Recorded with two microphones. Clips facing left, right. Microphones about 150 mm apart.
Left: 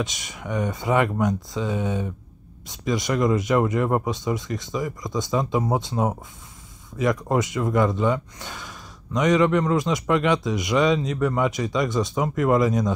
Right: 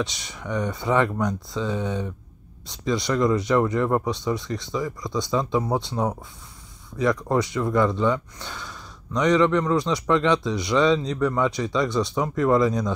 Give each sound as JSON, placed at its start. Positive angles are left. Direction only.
{"t": 0.0, "sound": "speech", "side_deg": 15}